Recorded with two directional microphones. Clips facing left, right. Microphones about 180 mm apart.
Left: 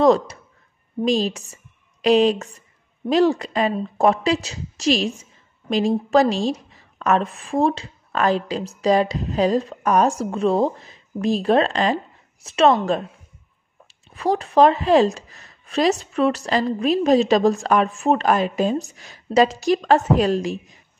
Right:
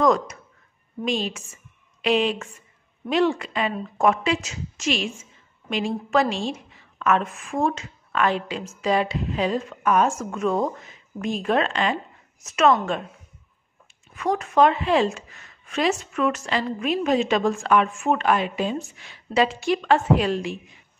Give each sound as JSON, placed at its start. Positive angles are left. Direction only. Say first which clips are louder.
{"t": 0.0, "sound": "a woman's voice", "louder": "left 4 dB", "side_deg": 35}
{"t": 14.1, "sound": "a woman's voice", "louder": "left 3 dB", "side_deg": 35}